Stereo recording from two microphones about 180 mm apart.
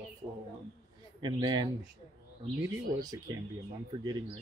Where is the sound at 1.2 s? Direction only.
25° right (ahead or behind).